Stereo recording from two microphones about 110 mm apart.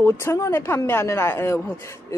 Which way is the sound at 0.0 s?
25° left (ahead or behind).